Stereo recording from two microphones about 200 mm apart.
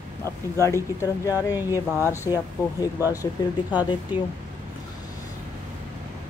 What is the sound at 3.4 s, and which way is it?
Speech, 20° left (ahead or behind).